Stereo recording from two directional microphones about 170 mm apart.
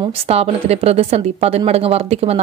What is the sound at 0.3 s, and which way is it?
A woman's voice, 35° right (ahead or behind).